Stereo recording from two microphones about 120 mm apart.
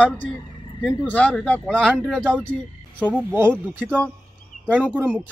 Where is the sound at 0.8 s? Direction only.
10° left (ahead or behind).